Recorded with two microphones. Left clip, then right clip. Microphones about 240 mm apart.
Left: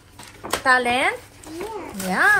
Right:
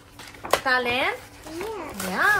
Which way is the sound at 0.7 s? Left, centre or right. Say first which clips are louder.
Left 7 dB; left.